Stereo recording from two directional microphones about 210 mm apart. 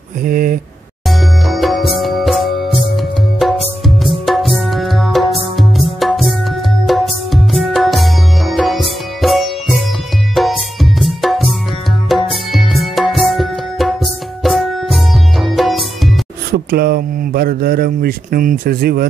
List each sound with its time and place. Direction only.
0.2 s speech: 40° right (ahead or behind)
1.0 s music: centre (ahead or behind)
12.1 s tabla: centre (ahead or behind)
14.4 s music: centre (ahead or behind)
16.5 s speech: 50° right (ahead or behind)